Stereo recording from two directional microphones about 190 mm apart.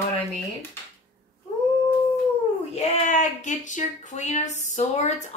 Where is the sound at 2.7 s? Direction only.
35° left (ahead or behind).